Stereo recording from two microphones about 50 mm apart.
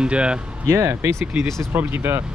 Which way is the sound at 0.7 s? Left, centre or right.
Right.